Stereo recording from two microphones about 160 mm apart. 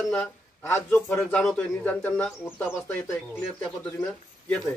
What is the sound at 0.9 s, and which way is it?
Speech, 5° left (ahead or behind).